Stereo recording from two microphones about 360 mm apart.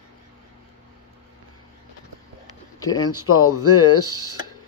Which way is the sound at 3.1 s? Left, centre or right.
Left.